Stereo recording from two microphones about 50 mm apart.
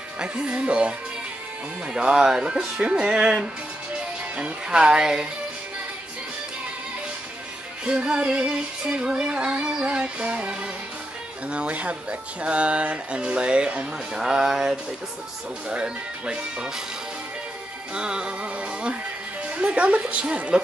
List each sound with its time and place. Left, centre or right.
0.2 s speech: centre
2.0 s speech: centre
7.8 s speech: centre
14.1 s speech: centre
17.9 s music: centre
19.4 s speech: right